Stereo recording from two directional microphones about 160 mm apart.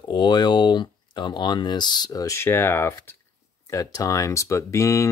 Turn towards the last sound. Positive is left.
turn(degrees=20)  # may be behind; listen again after turning